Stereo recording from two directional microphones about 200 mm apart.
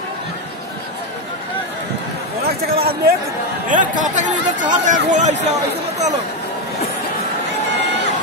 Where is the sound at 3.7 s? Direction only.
40° right (ahead or behind).